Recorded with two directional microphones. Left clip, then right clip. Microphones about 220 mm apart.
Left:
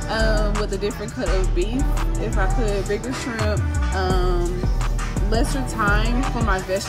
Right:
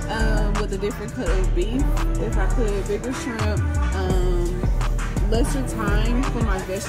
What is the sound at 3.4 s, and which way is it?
Music, centre (ahead or behind).